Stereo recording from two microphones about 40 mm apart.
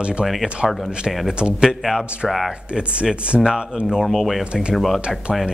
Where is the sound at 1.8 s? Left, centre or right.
Centre.